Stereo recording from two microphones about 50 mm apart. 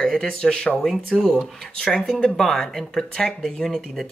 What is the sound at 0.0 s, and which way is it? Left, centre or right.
Speech, centre.